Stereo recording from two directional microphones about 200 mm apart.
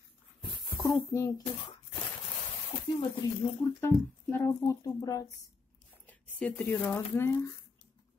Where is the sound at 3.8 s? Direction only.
10° left (ahead or behind).